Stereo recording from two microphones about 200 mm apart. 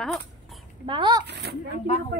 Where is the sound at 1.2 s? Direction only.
55° right (ahead or behind).